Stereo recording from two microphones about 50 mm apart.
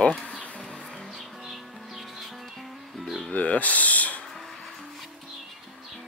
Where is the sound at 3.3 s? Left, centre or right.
Left.